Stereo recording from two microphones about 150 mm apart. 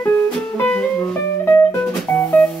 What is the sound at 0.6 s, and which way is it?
Music, 10° left (ahead or behind).